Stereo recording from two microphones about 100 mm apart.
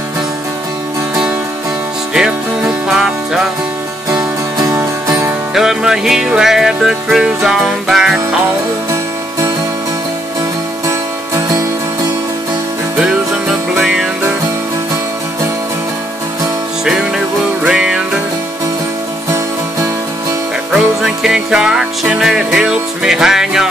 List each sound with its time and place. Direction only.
2.9 s music: 5° right (ahead or behind)
4.1 s music: 35° right (ahead or behind)
5.5 s music: 5° right (ahead or behind)
13.0 s music: 5° right (ahead or behind)
16.8 s music: 5° right (ahead or behind)
20.7 s music: 5° right (ahead or behind)